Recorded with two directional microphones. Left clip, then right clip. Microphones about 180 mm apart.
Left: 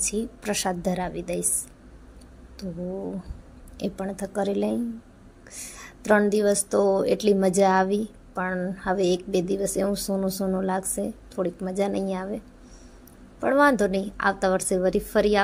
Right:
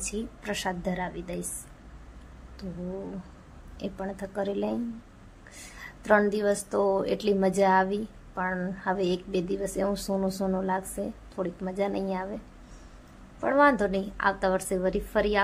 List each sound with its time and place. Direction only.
0.0 s a woman's voice: 20° left (ahead or behind)
3.8 s a woman's voice: 20° left (ahead or behind)
13.4 s a woman's voice: 20° left (ahead or behind)